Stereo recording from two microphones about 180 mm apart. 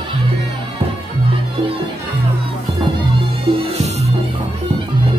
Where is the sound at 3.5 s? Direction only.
30° right (ahead or behind).